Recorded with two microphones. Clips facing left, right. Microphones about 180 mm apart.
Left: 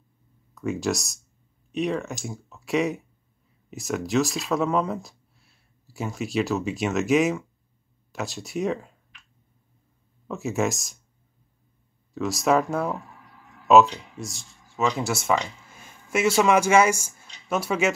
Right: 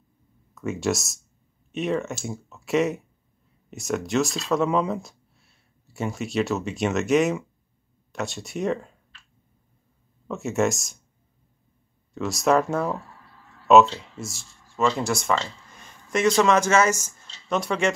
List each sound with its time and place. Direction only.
0.6 s speech: centre (ahead or behind)
4.5 s a sound: centre (ahead or behind)
6.0 s speech: centre (ahead or behind)
10.2 s speech: centre (ahead or behind)
12.1 s speech: centre (ahead or behind)
12.9 s a sound: 15° left (ahead or behind)
13.8 s speech: 15° left (ahead or behind)
14.1 s speech: centre (ahead or behind)